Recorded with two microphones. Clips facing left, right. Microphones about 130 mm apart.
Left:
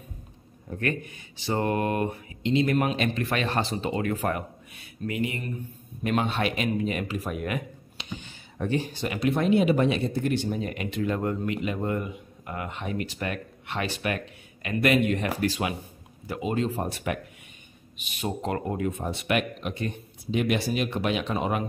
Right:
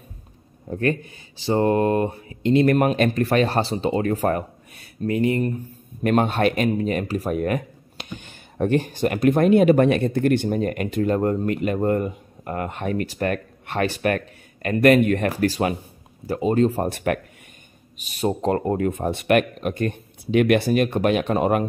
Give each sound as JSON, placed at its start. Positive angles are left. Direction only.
{"t": 0.7, "sound": "speech", "side_deg": -35}
{"t": 2.4, "sound": "speech", "side_deg": -50}
{"t": 17.9, "sound": "speech", "side_deg": -40}